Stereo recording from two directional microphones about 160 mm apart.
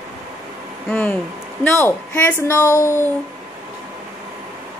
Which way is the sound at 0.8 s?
10° left (ahead or behind).